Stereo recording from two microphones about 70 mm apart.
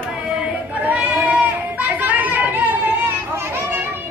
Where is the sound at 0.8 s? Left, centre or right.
Right.